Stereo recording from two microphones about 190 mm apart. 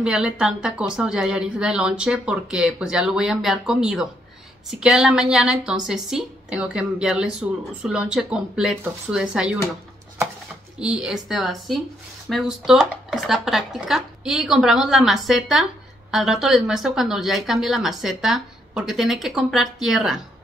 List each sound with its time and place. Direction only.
0.0 s a woman's voice: 5° right (ahead or behind)
10.8 s a woman's voice: 5° right (ahead or behind)